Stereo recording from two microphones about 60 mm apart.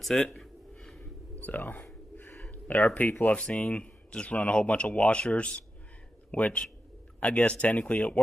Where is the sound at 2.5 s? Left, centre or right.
Left.